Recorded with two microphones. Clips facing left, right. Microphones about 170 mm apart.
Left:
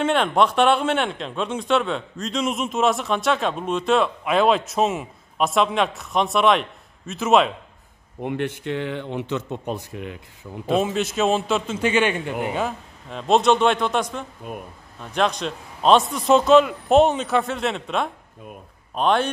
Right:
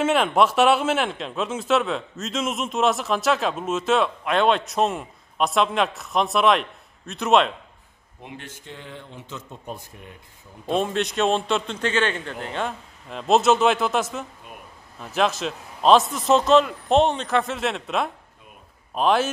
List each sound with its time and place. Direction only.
0.0 s speech: 5° right (ahead or behind)
8.2 s speech: 60° left (ahead or behind); by 10.1 s 85° left
10.7 s speech: 5° left (ahead or behind)
14.4 s speech: 45° left (ahead or behind)
15.0 s speech: 5° right (ahead or behind)